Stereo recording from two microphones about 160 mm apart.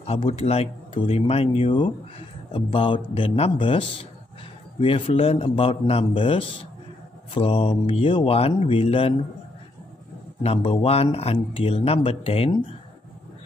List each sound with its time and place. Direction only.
0.0 s speech: 40° left (ahead or behind)
10.4 s speech: 35° left (ahead or behind)